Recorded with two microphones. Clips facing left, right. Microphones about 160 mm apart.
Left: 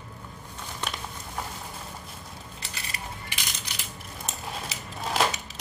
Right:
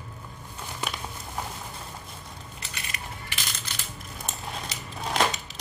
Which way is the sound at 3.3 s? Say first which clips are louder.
Right 1 dB; 15° left (ahead or behind).